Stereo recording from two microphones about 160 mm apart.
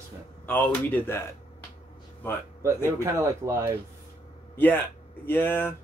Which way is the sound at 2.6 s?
15° right (ahead or behind).